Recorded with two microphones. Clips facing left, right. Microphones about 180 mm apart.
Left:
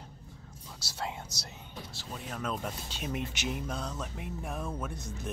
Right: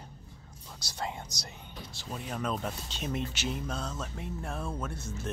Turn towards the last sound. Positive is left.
turn(degrees=15)  # may be behind; listen again after turning